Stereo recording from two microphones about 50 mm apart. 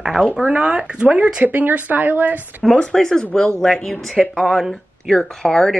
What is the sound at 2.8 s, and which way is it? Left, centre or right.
Speech, centre.